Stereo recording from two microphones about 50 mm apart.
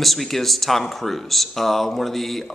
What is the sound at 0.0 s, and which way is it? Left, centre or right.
Speech, centre.